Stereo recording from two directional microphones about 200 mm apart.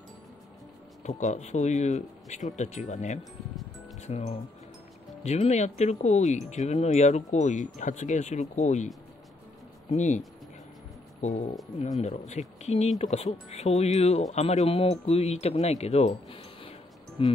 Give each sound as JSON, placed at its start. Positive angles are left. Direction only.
{"t": 1.0, "sound": "speech", "side_deg": 35}